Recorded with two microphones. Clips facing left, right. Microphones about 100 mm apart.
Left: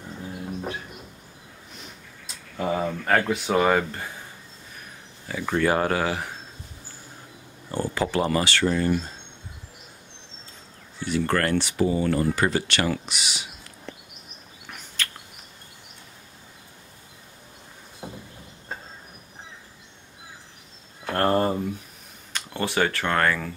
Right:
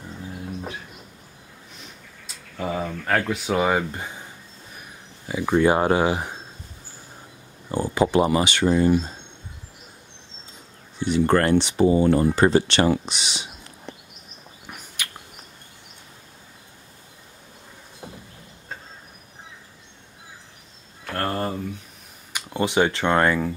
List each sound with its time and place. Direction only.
2.7 s speech: 5° left (ahead or behind)
3.9 s speech: 20° right (ahead or behind)
5.3 s speech: 15° right (ahead or behind)
7.7 s speech: 20° right (ahead or behind)
11.0 s speech: 20° right (ahead or behind)
15.0 s insect: 15° right (ahead or behind)
18.0 s a sound: 15° left (ahead or behind)
21.0 s a sound: 20° left (ahead or behind)
22.3 s speech: 15° right (ahead or behind)